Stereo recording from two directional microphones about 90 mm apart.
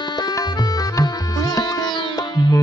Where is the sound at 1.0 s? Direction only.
45° left (ahead or behind).